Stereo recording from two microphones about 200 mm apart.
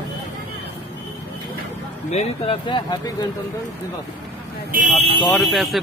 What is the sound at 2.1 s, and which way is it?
Speech, 25° left (ahead or behind).